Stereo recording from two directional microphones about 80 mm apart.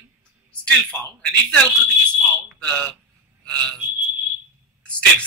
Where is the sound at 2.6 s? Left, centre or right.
Centre.